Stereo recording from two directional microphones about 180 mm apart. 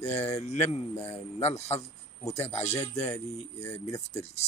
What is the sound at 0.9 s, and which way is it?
Speech, 15° left (ahead or behind).